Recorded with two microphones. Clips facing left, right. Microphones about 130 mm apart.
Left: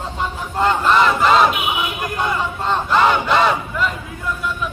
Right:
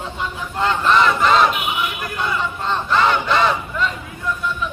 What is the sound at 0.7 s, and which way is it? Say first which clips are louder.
Speech: left 1 dB; 10° left (ahead or behind).